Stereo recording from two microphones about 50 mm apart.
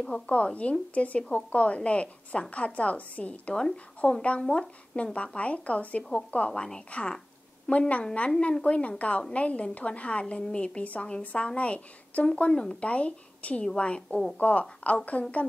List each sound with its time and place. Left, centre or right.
0.3 s a woman's voice: left